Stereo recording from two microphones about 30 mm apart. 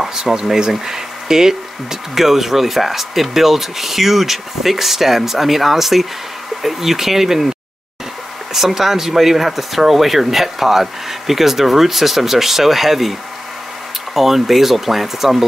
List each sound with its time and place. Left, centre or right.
0.1 s a sound: centre
0.5 s speech: centre
8.5 s speech: centre
14.1 s speech: centre